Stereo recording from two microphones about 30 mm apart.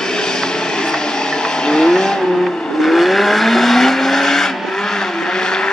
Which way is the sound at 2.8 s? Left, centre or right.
Centre.